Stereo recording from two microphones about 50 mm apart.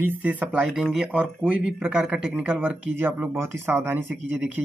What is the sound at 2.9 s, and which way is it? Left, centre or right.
Speech, right.